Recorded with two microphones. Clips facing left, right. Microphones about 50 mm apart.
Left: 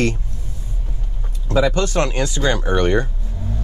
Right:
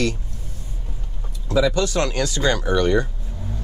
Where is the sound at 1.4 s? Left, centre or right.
Left.